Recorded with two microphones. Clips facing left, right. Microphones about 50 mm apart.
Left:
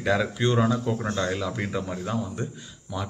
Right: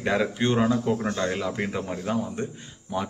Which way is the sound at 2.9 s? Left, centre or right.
Right.